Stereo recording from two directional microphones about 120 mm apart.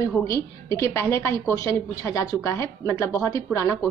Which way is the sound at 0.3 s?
25° left (ahead or behind).